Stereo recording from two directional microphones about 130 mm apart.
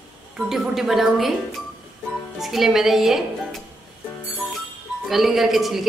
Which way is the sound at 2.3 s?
Centre (ahead or behind).